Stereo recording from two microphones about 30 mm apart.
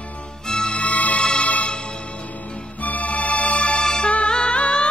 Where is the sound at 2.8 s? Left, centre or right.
Left.